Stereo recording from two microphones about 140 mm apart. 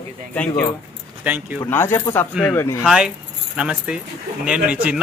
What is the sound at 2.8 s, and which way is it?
Speech, 5° right (ahead or behind).